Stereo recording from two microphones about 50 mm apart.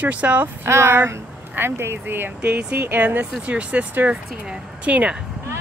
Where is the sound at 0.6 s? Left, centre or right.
Right.